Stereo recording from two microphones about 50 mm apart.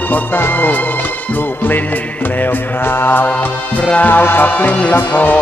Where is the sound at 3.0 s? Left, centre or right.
Left.